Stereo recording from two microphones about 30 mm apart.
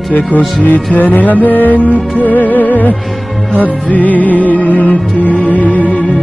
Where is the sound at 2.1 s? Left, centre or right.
Left.